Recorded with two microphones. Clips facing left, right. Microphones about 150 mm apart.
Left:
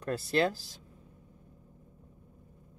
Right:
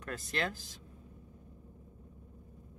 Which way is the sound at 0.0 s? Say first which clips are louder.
Left 8 dB; 35° left (ahead or behind).